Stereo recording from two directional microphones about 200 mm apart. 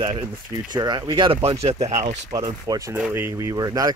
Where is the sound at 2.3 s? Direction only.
20° right (ahead or behind).